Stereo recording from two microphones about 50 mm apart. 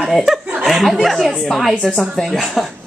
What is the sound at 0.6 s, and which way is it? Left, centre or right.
Chuckle, centre.